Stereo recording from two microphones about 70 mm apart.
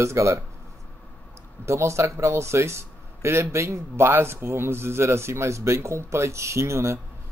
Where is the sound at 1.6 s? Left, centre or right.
Right.